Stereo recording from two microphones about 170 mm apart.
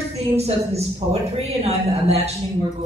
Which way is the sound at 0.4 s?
35° right (ahead or behind).